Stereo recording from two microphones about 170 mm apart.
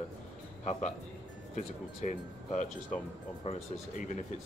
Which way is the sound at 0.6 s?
45° left (ahead or behind).